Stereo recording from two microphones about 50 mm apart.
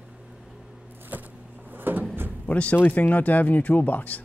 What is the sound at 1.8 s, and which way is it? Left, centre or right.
Cupboard open or close, right.